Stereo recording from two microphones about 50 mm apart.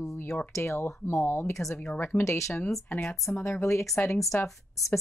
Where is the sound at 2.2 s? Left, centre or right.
Left.